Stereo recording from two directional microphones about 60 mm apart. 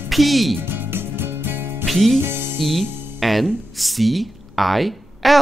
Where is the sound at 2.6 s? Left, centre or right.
Centre.